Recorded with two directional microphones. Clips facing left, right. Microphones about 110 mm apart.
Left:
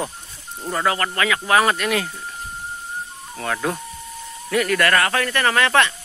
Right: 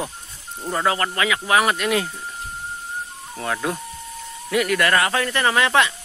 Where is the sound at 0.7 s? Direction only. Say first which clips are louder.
Even; 20° right (ahead or behind).